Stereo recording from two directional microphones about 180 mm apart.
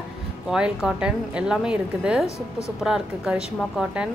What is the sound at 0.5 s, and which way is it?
A woman's voice, 5° right (ahead or behind).